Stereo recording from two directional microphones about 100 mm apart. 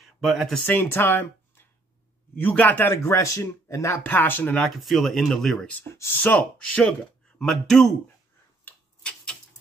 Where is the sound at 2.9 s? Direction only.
30° left (ahead or behind).